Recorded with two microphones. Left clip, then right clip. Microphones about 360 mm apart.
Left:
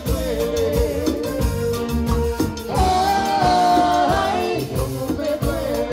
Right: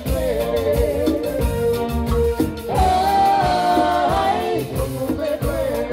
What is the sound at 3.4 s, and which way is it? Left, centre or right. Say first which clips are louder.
Music: left 1 dB; right.